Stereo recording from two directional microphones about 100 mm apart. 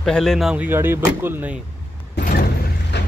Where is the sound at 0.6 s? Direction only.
20° right (ahead or behind).